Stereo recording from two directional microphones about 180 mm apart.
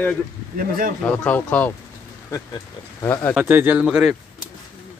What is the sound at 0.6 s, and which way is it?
Speech, 50° right (ahead or behind).